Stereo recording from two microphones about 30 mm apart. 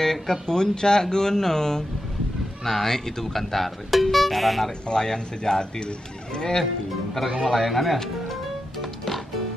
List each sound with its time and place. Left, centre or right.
0.0 s speech: centre
4.8 s speech: left
7.2 s a man's voice: centre
7.5 s speech: centre
8.3 s music: centre